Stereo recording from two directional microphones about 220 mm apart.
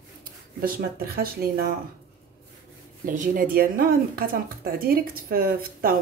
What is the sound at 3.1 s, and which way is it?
A woman's voice, 40° right (ahead or behind).